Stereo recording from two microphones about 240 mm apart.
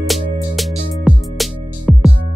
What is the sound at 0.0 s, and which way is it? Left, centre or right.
Music, centre.